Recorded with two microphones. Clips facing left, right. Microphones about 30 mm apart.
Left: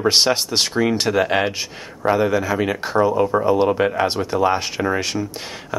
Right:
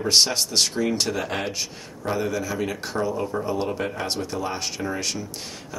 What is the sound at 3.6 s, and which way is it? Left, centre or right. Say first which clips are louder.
Speech: left 10 dB; left.